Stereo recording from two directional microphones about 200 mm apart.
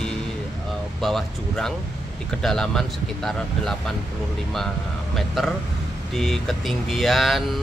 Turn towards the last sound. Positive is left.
turn(degrees=0)  # may be behind; listen again after turning